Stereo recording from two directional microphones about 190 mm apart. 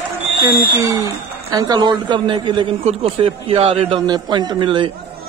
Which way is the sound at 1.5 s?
20° right (ahead or behind).